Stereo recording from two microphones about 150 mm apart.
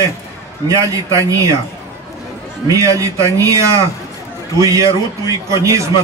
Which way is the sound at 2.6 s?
20° right (ahead or behind).